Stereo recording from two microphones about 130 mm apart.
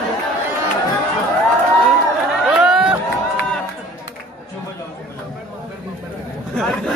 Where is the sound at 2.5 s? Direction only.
5° right (ahead or behind).